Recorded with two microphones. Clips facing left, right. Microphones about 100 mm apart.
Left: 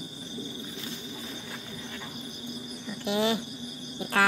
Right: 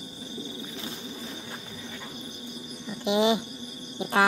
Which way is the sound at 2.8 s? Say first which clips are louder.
Right 4 dB; 20° right (ahead or behind).